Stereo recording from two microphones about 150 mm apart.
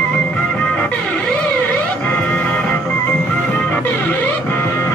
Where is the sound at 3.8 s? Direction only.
10° left (ahead or behind).